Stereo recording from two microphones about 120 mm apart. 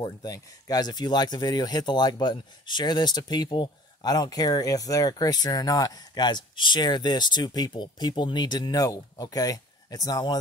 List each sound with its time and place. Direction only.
0.0 s speech: 30° left (ahead or behind)